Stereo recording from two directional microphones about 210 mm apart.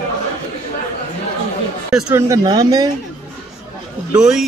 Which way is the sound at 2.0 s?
15° right (ahead or behind).